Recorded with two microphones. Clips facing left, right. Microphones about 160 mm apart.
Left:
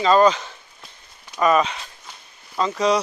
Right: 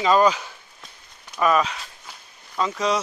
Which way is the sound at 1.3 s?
Centre (ahead or behind).